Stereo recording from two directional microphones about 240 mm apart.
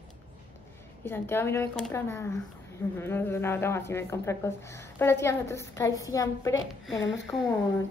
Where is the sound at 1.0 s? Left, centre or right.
Centre.